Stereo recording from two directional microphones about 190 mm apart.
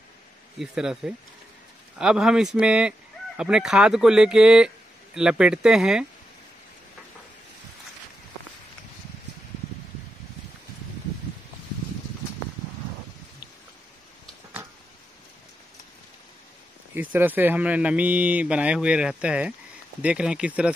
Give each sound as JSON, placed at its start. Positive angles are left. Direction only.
{"t": 0.6, "sound": "speech", "side_deg": -5}
{"t": 16.9, "sound": "speech", "side_deg": -10}